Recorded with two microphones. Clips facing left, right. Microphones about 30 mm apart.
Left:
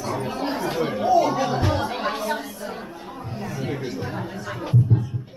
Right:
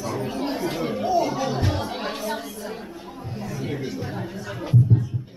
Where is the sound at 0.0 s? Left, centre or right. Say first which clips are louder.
Left 1 dB; centre.